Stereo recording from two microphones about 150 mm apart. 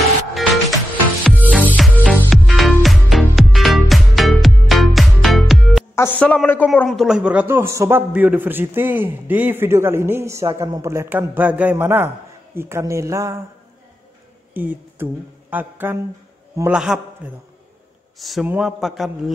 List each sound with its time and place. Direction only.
0.0 s music: centre (ahead or behind)
2.2 s music: centre (ahead or behind)
5.9 s speech: 10° left (ahead or behind)
6.9 s a man's voice: centre (ahead or behind); by 13.4 s 20° right (ahead or behind)
14.5 s a man's voice: 10° right (ahead or behind)